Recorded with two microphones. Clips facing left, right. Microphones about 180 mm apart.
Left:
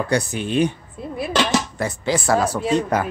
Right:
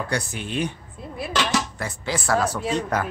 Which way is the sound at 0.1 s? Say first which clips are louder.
Left 7 dB; 20° left (ahead or behind).